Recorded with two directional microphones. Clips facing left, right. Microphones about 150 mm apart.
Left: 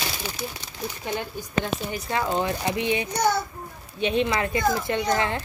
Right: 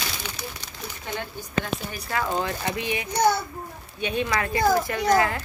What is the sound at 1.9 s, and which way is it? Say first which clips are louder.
Speech: left 1 dB; 20° left (ahead or behind).